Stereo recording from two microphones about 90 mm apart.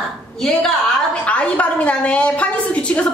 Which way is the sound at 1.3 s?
15° left (ahead or behind).